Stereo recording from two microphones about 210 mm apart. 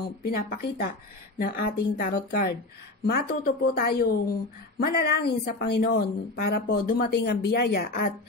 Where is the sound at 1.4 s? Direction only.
45° left (ahead or behind).